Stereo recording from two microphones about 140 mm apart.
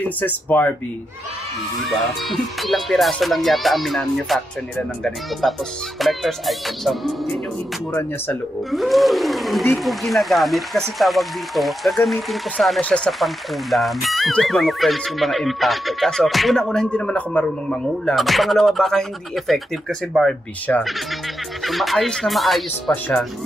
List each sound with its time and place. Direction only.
0.2 s speech: 10° left (ahead or behind)
2.2 s speech: centre (ahead or behind)
5.4 s speech: centre (ahead or behind)
7.9 s speech: 15° left (ahead or behind)
8.7 s speech: centre (ahead or behind)
20.7 s speech: 10° left (ahead or behind)